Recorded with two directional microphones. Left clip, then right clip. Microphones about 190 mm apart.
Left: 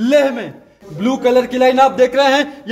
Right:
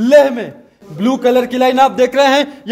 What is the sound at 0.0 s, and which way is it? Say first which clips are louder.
A man's voice: right 4 dB; 45° right (ahead or behind).